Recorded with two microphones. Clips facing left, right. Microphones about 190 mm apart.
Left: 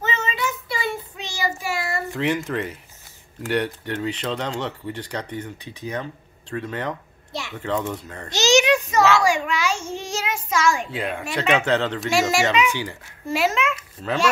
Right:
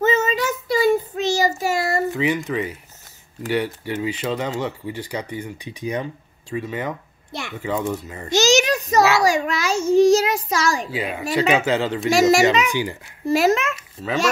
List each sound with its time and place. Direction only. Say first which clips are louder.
0.0 s child singing: right 7 dB; 45° right (ahead or behind)
2.1 s speech: right 2 dB; centre (ahead or behind)
8.3 s a child's voice: right 1 dB; 45° right (ahead or behind)
10.9 s speech: right 3 dB; 5° right (ahead or behind)
12.1 s a child's voice: right 6 dB; 40° right (ahead or behind)